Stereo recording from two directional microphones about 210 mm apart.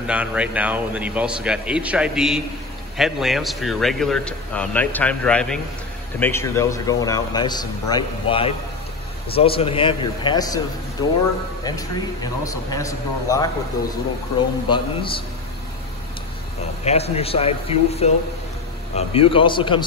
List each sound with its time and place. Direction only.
0.0 s a man's voice: 5° right (ahead or behind); by 13.5 s 15° left (ahead or behind)
14.7 s a man's voice: 25° left (ahead or behind)
16.8 s a man's voice: 30° left (ahead or behind)